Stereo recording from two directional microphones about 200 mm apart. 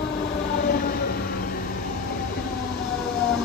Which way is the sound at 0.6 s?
50° left (ahead or behind).